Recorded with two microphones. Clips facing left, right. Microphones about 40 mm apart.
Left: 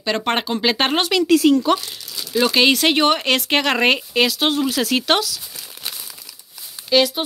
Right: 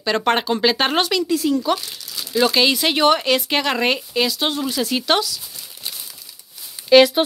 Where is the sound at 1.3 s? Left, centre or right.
Left.